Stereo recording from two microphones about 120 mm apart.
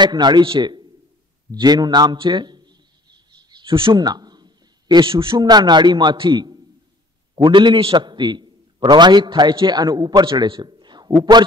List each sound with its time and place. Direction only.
0.0 s a man's voice: 35° right (ahead or behind)